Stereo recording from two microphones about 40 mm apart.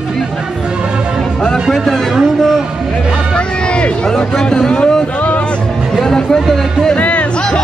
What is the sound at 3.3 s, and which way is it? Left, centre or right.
Music, left.